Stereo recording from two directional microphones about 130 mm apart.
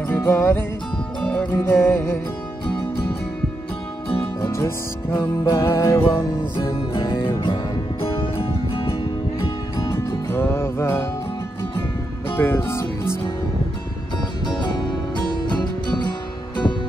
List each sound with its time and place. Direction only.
0.2 s music: 20° left (ahead or behind)
4.4 s music: 25° left (ahead or behind)
8.0 s music: 45° left (ahead or behind)
9.8 s music: 25° left (ahead or behind)
12.4 s music: 20° left (ahead or behind)
14.4 s music: 35° left (ahead or behind)